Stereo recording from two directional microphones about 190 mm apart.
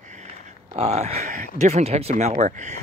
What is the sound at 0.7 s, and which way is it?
Speech, 35° right (ahead or behind).